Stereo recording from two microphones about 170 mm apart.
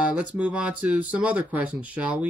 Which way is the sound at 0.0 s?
5° right (ahead or behind).